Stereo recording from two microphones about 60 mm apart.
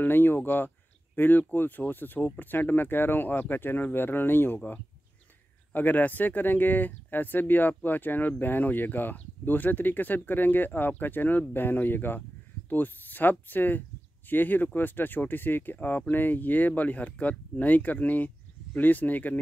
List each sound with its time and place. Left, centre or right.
0.0 s speech: left
5.7 s speech: left